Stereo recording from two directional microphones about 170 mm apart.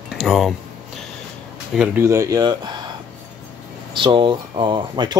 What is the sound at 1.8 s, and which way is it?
Speech, 15° right (ahead or behind).